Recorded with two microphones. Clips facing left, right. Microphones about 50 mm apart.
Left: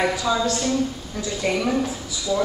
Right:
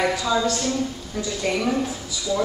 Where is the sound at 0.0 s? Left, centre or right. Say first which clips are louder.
Even; centre.